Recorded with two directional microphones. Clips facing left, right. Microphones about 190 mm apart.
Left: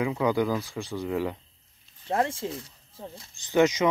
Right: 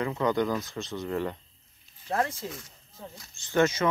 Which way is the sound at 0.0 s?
10° left (ahead or behind).